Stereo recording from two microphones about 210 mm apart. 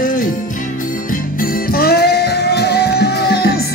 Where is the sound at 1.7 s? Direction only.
45° left (ahead or behind).